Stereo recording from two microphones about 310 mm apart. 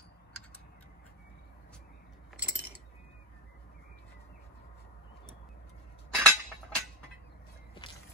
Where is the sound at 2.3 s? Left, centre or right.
Centre.